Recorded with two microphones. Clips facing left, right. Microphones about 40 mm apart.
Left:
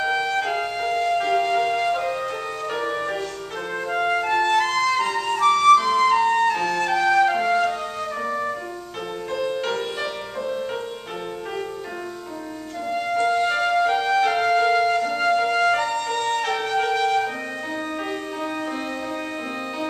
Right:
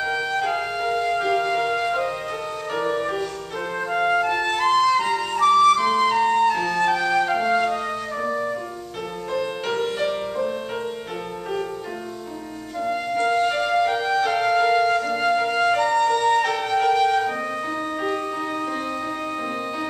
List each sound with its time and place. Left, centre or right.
0.0 s music: centre
3.9 s flute: centre
7.5 s music: centre
8.2 s music: centre
9.3 s music: centre
12.8 s music: centre